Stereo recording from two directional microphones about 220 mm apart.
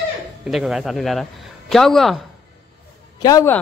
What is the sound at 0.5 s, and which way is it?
Speech, centre (ahead or behind).